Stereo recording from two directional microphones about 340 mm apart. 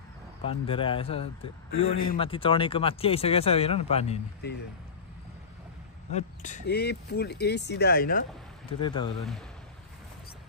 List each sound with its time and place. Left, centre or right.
0.4 s speech: centre
1.7 s speech: left
2.1 s speech: centre
6.1 s speech: left
8.8 s speech: centre